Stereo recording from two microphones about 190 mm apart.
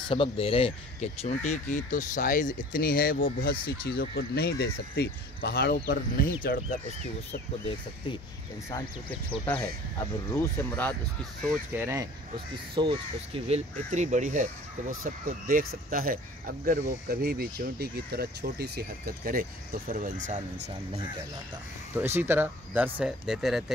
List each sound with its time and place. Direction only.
0.1 s speech: 30° left (ahead or behind); by 6.8 s 50° left (ahead or behind)
9.5 s speech: 10° left (ahead or behind)
11.7 s speech: 10° right (ahead or behind)
12.7 s speech: 25° right (ahead or behind)
13.5 s speech: 40° right (ahead or behind)
21.9 s speech: 10° right (ahead or behind)